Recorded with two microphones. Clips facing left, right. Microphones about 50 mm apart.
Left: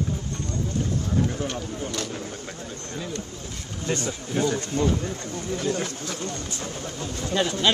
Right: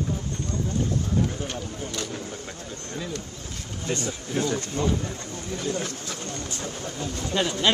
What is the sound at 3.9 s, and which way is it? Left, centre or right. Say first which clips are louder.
A man's voice: left 1 dB; left.